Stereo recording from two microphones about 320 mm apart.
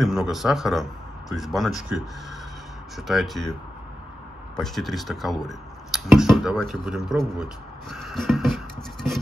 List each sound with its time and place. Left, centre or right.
0.0 s speech: centre
3.0 s speech: centre
4.6 s speech: centre